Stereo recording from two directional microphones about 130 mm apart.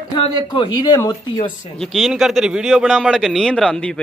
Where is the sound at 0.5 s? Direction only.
40° left (ahead or behind).